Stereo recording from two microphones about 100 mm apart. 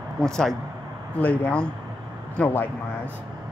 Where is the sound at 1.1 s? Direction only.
15° left (ahead or behind).